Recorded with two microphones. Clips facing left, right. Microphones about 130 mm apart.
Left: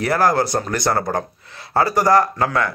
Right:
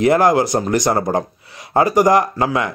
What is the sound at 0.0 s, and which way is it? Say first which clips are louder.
Speech: right 4 dB; 20° right (ahead or behind).